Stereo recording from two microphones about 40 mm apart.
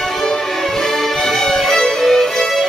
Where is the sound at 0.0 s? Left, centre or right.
Centre.